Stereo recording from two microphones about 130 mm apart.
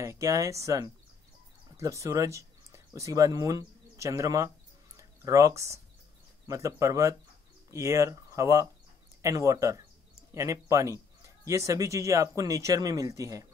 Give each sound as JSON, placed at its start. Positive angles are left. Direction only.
{"t": 0.0, "sound": "speech", "side_deg": -25}
{"t": 4.9, "sound": "a sound", "side_deg": -25}
{"t": 6.4, "sound": "speech", "side_deg": -25}